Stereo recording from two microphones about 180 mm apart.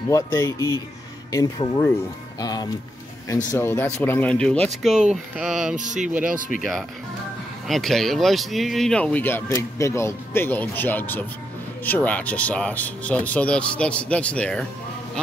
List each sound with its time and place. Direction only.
0.1 s speech: 15° left (ahead or behind); by 6.3 s 5° right (ahead or behind)
7.6 s speech: centre (ahead or behind)